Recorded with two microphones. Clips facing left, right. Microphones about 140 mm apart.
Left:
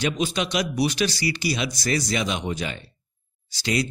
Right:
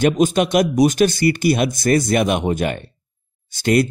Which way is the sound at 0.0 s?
50° right (ahead or behind).